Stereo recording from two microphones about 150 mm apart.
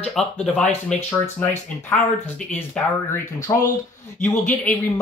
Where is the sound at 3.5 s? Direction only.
20° left (ahead or behind).